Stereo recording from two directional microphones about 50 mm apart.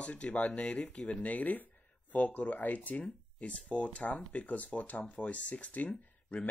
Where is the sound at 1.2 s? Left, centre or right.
Left.